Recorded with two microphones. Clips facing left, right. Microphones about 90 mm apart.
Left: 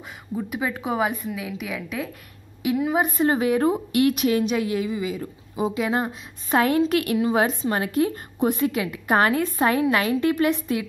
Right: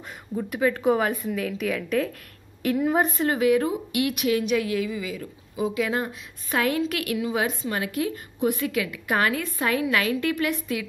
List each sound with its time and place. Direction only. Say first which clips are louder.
0.4 s a woman's voice: right 3 dB; 10° left (ahead or behind)
3.2 s a woman's voice: left 1 dB; 30° left (ahead or behind)